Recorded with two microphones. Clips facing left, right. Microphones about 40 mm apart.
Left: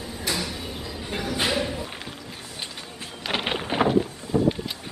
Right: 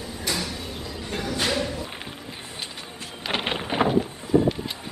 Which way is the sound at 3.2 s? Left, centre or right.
Centre.